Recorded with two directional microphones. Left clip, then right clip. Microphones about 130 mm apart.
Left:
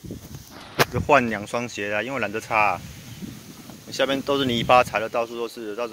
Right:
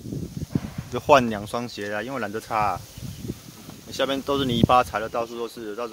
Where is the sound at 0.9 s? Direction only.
45° right (ahead or behind).